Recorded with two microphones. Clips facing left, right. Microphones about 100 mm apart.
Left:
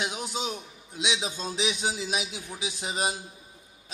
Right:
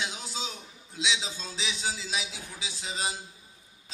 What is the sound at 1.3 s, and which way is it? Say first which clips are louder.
A man's voice: left 7 dB; 15° left (ahead or behind).